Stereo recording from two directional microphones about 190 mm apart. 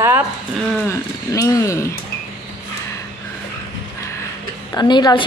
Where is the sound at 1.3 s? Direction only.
15° left (ahead or behind).